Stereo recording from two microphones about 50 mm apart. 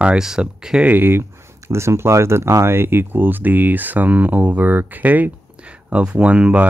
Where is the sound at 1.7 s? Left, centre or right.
Right.